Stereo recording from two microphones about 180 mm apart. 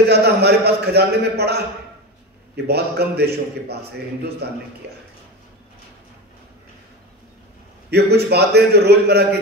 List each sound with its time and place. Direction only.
0.1 s a man's voice: 65° right (ahead or behind)
7.9 s a man's voice: 65° right (ahead or behind)